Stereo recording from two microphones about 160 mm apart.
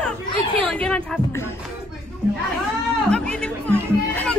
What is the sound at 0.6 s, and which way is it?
Speech, 5° left (ahead or behind).